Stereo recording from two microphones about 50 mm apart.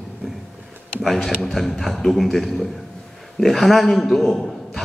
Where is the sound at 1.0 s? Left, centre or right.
Centre.